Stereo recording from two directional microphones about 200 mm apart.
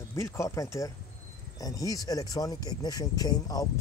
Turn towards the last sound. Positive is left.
turn(degrees=20)  # may be behind; listen again after turning